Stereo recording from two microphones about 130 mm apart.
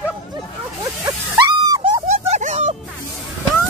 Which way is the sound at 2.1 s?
65° right (ahead or behind).